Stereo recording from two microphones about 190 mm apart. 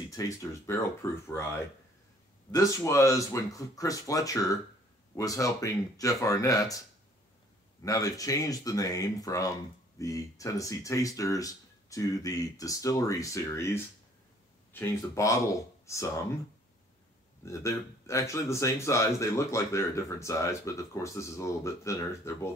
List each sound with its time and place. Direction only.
0.1 s speech: 15° left (ahead or behind)
7.8 s speech: 20° left (ahead or behind)
17.5 s speech: 15° left (ahead or behind)